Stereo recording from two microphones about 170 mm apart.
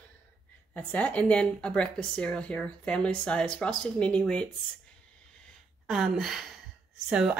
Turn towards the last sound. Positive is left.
turn(degrees=-5)  # may be behind; listen again after turning